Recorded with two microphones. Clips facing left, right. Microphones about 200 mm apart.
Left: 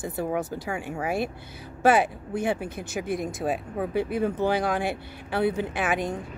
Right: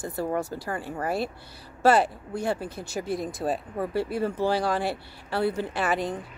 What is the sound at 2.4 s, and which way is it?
Speech, 60° left (ahead or behind).